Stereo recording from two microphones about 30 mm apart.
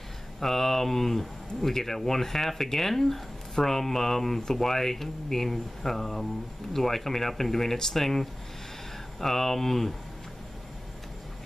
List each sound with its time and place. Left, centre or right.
0.4 s speech: centre